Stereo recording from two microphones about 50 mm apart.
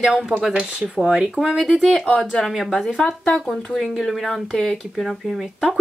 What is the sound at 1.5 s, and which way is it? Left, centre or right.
Speech, centre.